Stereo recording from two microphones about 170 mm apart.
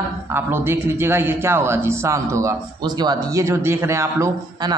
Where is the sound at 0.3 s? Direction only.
15° right (ahead or behind).